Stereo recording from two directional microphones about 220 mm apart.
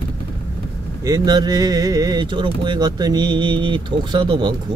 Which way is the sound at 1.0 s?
15° right (ahead or behind).